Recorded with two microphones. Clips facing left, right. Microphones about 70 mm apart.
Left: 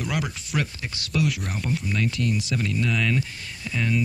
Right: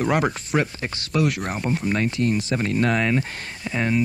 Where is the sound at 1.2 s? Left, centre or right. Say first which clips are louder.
Right 4 dB; right.